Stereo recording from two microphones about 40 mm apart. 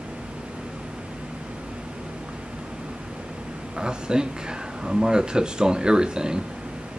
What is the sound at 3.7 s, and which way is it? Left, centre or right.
Speech, centre.